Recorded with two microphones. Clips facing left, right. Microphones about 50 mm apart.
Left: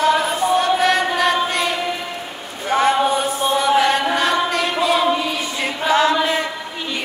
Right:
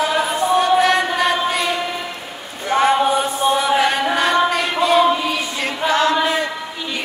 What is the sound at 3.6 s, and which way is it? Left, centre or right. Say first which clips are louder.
Music: left 1 dB; centre.